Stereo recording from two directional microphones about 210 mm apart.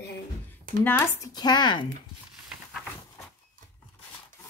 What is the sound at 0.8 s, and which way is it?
Speech, 15° left (ahead or behind).